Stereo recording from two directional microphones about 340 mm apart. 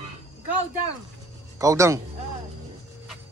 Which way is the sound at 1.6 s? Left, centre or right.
Centre.